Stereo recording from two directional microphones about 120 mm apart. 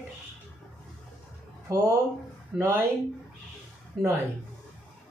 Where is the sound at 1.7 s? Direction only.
25° right (ahead or behind).